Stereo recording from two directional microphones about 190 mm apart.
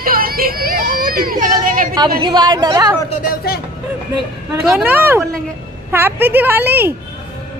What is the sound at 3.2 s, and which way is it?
Speech, 55° left (ahead or behind).